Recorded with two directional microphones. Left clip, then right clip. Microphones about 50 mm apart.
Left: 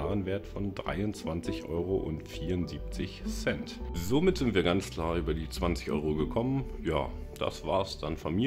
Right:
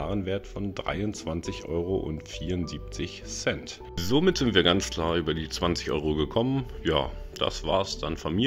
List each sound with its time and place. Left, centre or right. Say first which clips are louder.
0.0 s speech: right 3 dB; right
4.0 s speech: right 4 dB; right
5.7 s speech: right 3 dB; right
7.4 s speech: right 5 dB; right
7.8 s speech: right 4 dB; centre